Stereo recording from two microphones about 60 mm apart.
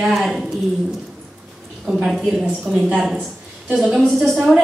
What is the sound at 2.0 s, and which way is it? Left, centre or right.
Speech, centre.